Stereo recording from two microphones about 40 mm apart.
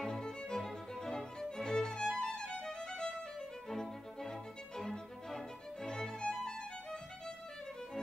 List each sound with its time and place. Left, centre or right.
0.0 s music: centre